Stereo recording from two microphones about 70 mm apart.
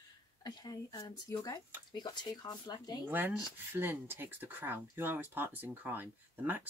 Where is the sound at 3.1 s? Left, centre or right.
Right.